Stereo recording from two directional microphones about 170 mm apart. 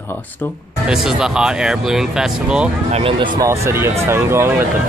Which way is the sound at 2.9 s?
35° right (ahead or behind).